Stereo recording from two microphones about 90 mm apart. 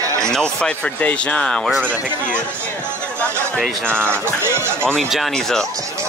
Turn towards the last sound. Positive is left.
turn(degrees=5)  # may be behind; listen again after turning